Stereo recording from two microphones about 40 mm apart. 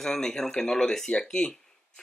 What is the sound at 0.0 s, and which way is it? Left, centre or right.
Speech, centre.